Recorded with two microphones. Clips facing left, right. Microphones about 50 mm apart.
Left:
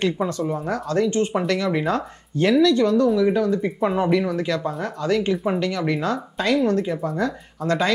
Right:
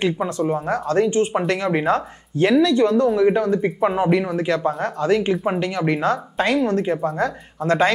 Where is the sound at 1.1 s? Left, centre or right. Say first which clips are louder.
Right 2 dB; right.